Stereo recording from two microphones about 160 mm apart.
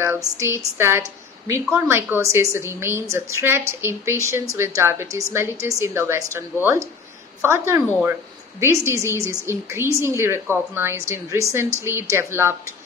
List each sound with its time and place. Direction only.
0.0 s speech: 15° right (ahead or behind)
8.0 s a sound: 15° right (ahead or behind)
8.8 s speech: 15° right (ahead or behind)